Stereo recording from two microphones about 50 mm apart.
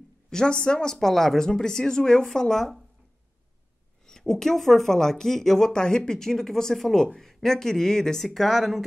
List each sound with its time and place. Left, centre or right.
0.3 s speech: centre
0.9 s speech: centre
4.0 s speech: centre